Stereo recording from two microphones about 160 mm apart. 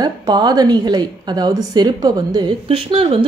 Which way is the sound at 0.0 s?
25° right (ahead or behind).